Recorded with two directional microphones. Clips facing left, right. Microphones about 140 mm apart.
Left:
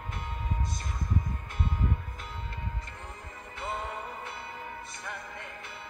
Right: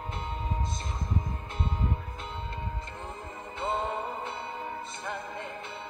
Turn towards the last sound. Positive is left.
turn(degrees=-25)  # may be behind; listen again after turning